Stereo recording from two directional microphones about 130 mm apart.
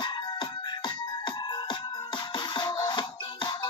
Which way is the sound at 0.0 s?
35° left (ahead or behind).